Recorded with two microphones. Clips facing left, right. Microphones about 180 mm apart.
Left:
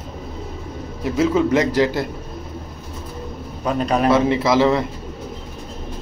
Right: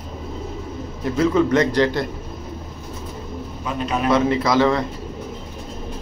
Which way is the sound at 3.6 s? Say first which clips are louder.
Left 5 dB; 40° left (ahead or behind).